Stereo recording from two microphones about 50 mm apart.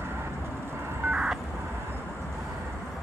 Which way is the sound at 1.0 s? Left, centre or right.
Right.